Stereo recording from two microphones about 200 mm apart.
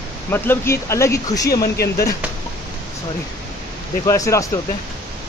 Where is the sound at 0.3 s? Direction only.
10° left (ahead or behind).